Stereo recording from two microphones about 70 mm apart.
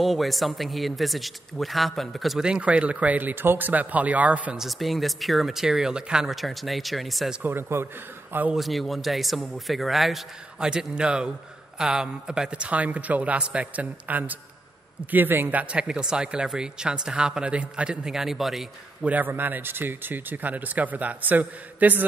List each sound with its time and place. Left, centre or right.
0.0 s speech: centre
2.4 s speech: centre
4.6 s speech: centre
7.4 s a man's voice: right
8.5 s speech: centre; by 15.6 s right
15.7 s speech: centre
19.0 s speech: right